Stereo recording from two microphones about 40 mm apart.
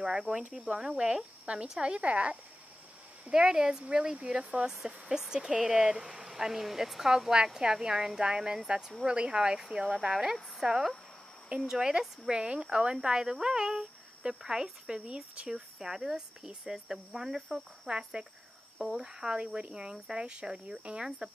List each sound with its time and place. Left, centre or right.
0.0 s cricket: right
1.8 s speech: right
3.3 s speech: centre
3.8 s cricket: right
4.6 s speech: centre
8.2 s cricket: right
9.0 s speech: right
11.6 s cricket: centre
12.9 s speech: centre
17.8 s cricket: right
18.9 s speech: centre
19.4 s cricket: right